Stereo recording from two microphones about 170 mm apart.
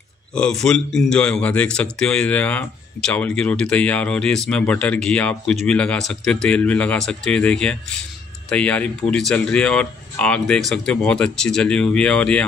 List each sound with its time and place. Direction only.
0.3 s speech: 5° left (ahead or behind)